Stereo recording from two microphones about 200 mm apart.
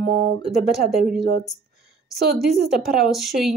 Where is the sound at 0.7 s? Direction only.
Centre (ahead or behind).